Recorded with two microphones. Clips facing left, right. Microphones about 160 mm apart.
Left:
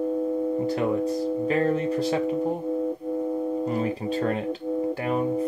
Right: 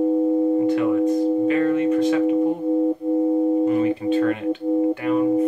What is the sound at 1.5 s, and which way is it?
Speech, 35° left (ahead or behind).